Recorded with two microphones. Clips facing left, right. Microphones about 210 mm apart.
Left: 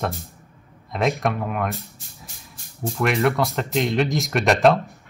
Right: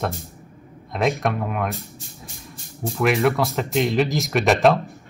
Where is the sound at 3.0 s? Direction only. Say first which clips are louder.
Right 1 dB; centre (ahead or behind).